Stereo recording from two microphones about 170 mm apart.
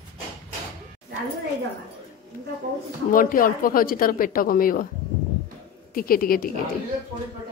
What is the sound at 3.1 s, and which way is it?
Speech, 55° left (ahead or behind).